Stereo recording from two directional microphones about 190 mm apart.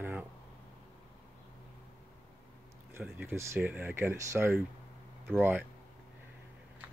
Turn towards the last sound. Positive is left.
turn(degrees=-10)  # may be behind; listen again after turning